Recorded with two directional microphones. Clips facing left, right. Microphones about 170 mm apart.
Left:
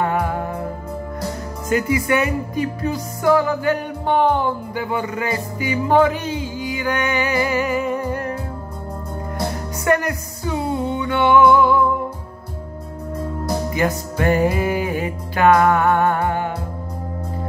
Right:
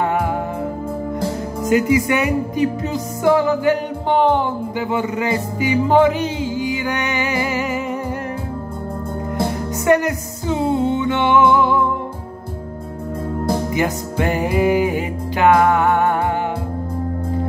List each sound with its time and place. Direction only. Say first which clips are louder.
0.0 s music: right 1 dB; 20° right (ahead or behind)
1.7 s music: right 3 dB; 20° right (ahead or behind)
9.8 s music: right 3 dB; 20° right (ahead or behind)
13.5 s music: right 1 dB; 20° right (ahead or behind)